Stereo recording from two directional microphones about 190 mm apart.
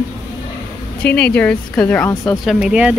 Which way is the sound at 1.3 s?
5° left (ahead or behind).